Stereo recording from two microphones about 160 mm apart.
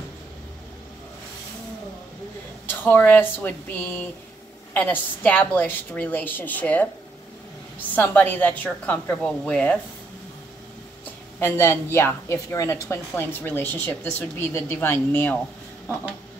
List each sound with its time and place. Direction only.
2.6 s a woman's voice: 10° left (ahead or behind)
7.9 s a woman's voice: 10° left (ahead or behind)
11.3 s a woman's voice: 15° left (ahead or behind)